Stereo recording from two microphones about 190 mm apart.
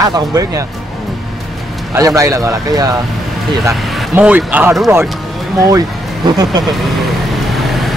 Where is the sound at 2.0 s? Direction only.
15° right (ahead or behind).